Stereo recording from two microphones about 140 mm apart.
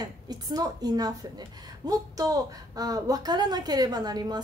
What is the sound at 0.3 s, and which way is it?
A woman's voice, 25° right (ahead or behind).